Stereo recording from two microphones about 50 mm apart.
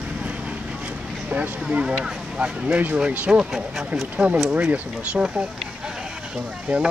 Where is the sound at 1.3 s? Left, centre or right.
Right.